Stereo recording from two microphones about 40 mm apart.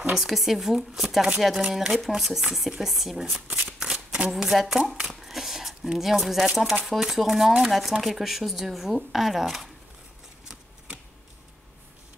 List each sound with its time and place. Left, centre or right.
0.1 s speech: centre
3.6 s shuffling cards: centre
4.4 s speech: centre
5.0 s a sound: centre
5.9 s speech: centre